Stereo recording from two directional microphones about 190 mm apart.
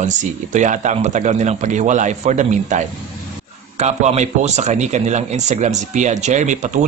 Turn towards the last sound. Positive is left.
turn(degrees=-40)  # may be behind; listen again after turning